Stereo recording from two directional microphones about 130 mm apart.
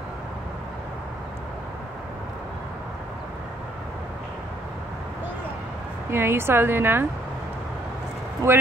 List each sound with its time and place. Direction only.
6.0 s a woman's voice: 20° right (ahead or behind)
8.4 s speech: 20° right (ahead or behind)